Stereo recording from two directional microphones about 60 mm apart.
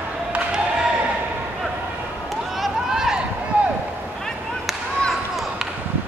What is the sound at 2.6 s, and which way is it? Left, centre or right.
Run, centre.